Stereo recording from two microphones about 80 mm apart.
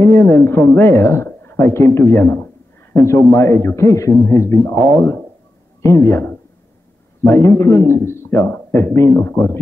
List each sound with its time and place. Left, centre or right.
0.1 s speech: left
2.9 s a man's voice: left